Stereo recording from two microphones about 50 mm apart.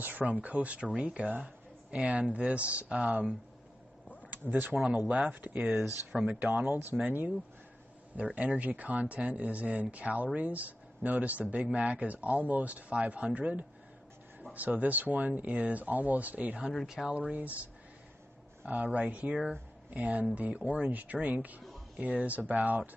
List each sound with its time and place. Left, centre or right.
0.0 s speech: right
1.4 s a sound: right
2.3 s speech: right
4.3 s speech: right
4.8 s speech: right
6.5 s speech: right
8.4 s speech: right
16.8 s speech: centre
17.1 s speech: right
18.7 s speech: right